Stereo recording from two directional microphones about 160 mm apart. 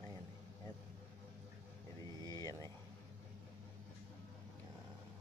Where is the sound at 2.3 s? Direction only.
20° left (ahead or behind).